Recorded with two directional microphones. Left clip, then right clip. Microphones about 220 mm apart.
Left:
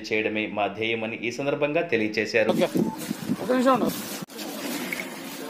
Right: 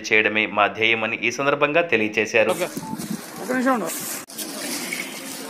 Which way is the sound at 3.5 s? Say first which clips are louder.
Even; 50° left (ahead or behind).